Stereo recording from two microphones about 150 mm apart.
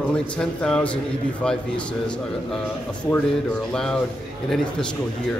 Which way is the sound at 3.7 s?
5° left (ahead or behind).